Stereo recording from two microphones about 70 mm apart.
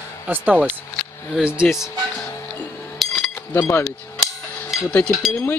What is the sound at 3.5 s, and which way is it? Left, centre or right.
Speech, left.